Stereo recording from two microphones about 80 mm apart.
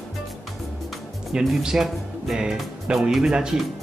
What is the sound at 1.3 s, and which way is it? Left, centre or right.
Speech, centre.